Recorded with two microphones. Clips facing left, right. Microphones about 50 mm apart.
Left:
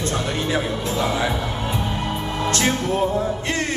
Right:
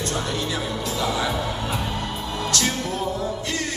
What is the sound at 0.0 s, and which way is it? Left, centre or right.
Speech, left.